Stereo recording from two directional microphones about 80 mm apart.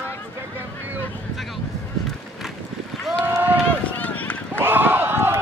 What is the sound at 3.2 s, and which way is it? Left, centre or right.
Run, right.